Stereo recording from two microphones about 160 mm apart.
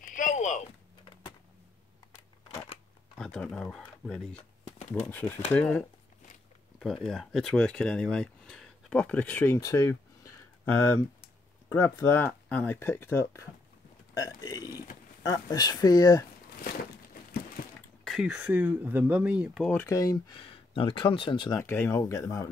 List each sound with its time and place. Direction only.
0.0 s a sound: 55° left (ahead or behind)
3.2 s speech: 5° left (ahead or behind); by 16.3 s 20° left (ahead or behind)
18.0 s speech: 5° right (ahead or behind)
19.7 s speech: 15° left (ahead or behind)
20.3 s speech: 35° left (ahead or behind)
21.5 s speech: 15° left (ahead or behind)